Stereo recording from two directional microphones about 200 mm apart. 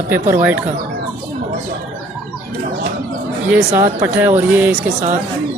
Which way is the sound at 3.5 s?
10° right (ahead or behind).